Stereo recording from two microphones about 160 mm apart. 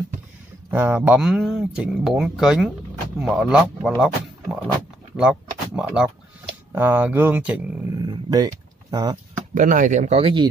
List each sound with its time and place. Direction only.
0.7 s speech: 10° right (ahead or behind)
4.7 s pig: 5° right (ahead or behind)
6.7 s speech: 15° right (ahead or behind)
8.0 s a sound: 25° right (ahead or behind)
9.5 s speech: 55° right (ahead or behind); by 10.5 s 35° right (ahead or behind)